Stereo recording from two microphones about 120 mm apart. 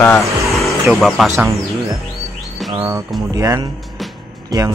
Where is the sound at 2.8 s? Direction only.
25° right (ahead or behind).